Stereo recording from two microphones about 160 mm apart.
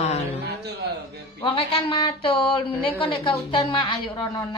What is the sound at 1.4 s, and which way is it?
A woman's voice, 35° left (ahead or behind).